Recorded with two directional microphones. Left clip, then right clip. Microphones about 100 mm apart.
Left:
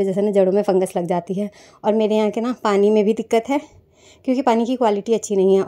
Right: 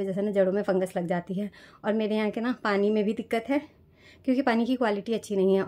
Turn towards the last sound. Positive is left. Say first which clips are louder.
# left 9 dB
turn(degrees=40)  # may be behind; listen again after turning